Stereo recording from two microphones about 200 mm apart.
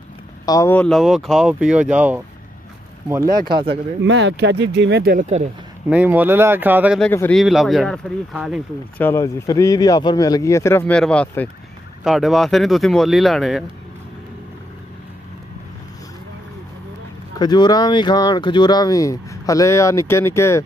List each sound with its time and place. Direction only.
0.5 s speech: 15° left (ahead or behind); by 2.2 s 5° right (ahead or behind)
3.3 s speech: 45° right (ahead or behind)
3.5 s speech: 25° right (ahead or behind)
4.0 s speech: 65° right (ahead or behind); by 5.5 s 35° right (ahead or behind)
5.9 s speech: 10° right (ahead or behind)
7.0 s speech: 10° left (ahead or behind)
17.4 s speech: 20° left (ahead or behind)